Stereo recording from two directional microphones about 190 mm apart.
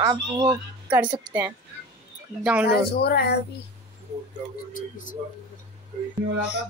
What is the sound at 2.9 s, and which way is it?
Speech, 55° left (ahead or behind).